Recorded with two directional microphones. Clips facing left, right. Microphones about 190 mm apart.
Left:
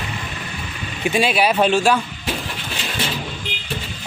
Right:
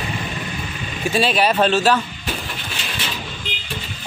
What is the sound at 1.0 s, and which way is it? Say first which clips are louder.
Speech: even; 10° left (ahead or behind).